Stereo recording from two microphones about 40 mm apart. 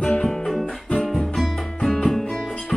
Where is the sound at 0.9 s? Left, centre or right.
Centre.